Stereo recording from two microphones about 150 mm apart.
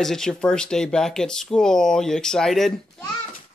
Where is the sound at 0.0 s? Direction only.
5° left (ahead or behind).